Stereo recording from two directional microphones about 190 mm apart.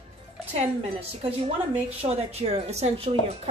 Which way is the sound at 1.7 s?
35° right (ahead or behind).